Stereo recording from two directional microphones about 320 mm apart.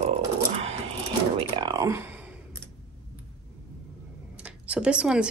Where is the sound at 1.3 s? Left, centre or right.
Centre.